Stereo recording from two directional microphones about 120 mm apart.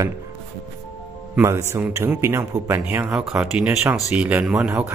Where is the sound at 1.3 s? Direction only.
20° right (ahead or behind).